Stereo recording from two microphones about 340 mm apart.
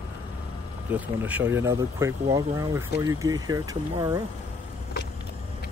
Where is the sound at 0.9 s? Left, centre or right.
Centre.